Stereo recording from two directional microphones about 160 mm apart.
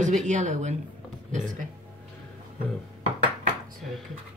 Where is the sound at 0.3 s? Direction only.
50° right (ahead or behind).